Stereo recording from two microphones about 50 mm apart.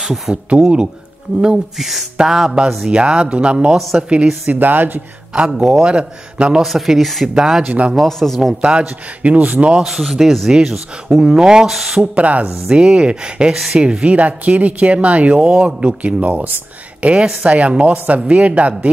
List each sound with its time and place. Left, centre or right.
0.3 s speech: centre
1.8 s speech: centre; by 4.1 s right
4.5 s speech: right
5.5 s speech: centre
6.6 s speech: centre
7.6 s speech: right
8.1 s speech: centre
8.5 s speech: right
9.8 s speech: centre
12.0 s speech: right
15.3 s speech: centre